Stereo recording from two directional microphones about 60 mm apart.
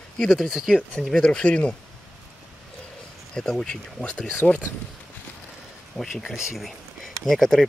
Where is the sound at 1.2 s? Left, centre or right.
Left.